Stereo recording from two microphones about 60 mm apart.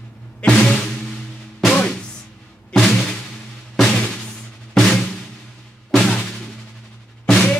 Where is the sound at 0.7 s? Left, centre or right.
Centre.